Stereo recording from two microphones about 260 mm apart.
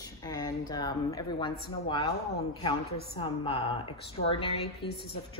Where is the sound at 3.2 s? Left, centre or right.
Left.